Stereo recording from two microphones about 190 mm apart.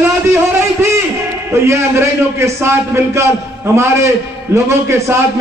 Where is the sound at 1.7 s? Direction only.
15° right (ahead or behind).